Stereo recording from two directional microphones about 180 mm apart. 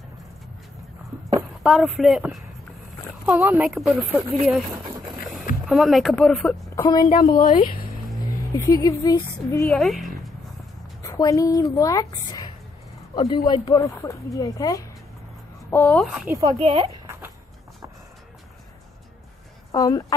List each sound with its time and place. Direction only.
1.6 s speech: centre (ahead or behind)
5.7 s speech: centre (ahead or behind)
6.7 s a woman's voice: 20° left (ahead or behind)
7.2 s speech: 50° left (ahead or behind)
8.5 s speech: 20° left (ahead or behind)
9.7 s speech: centre (ahead or behind)
11.0 s speech: 20° left (ahead or behind)
16.4 s speech: 35° right (ahead or behind)
17.0 s a sound: 15° right (ahead or behind)
19.7 s speech: 20° left (ahead or behind)